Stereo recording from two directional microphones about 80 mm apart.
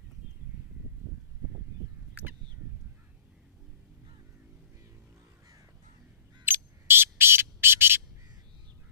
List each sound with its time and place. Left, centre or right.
6.4 s bird: right